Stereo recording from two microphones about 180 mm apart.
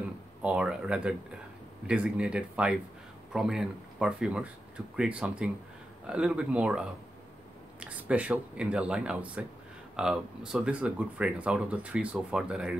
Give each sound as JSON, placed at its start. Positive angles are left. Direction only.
{"t": 0.4, "sound": "speech", "side_deg": -5}